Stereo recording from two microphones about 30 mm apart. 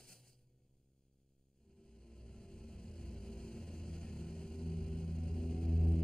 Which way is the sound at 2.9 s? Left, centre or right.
Left.